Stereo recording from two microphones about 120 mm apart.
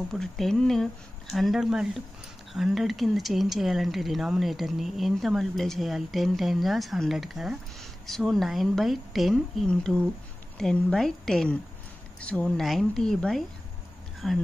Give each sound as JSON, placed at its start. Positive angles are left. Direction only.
{"t": 0.1, "sound": "speech", "side_deg": 5}